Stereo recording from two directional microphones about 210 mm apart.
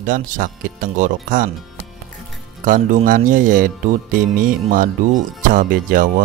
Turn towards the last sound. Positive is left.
turn(degrees=-40)  # may be behind; listen again after turning